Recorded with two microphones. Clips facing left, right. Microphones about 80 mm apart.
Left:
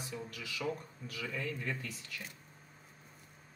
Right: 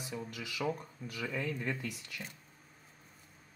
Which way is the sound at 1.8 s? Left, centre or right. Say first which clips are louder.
Right 3 dB; centre.